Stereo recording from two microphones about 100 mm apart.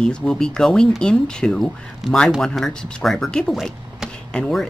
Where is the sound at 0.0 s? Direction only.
10° left (ahead or behind).